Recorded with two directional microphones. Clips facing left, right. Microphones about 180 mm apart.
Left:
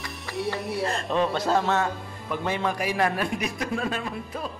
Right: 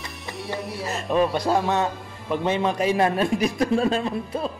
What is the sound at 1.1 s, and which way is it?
A man's voice, 15° right (ahead or behind).